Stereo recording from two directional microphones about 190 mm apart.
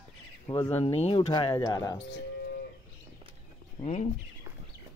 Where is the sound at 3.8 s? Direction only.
35° left (ahead or behind).